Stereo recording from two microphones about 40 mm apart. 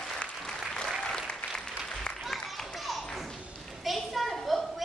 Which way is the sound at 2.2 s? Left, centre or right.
Centre.